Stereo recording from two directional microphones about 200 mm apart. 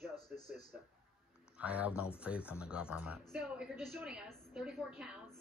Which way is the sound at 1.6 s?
5° right (ahead or behind).